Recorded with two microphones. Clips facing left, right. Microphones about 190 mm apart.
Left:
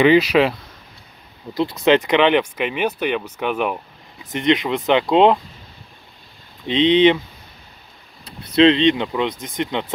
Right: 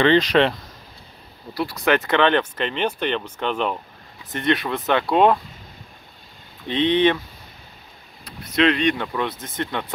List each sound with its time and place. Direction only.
0.0 s speech: 10° left (ahead or behind)
1.5 s speech: 20° left (ahead or behind)
6.7 s speech: 20° left (ahead or behind)
8.3 s speech: 25° left (ahead or behind)